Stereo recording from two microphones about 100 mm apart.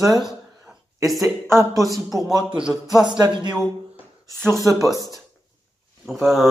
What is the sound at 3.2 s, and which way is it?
Speech, 45° right (ahead or behind).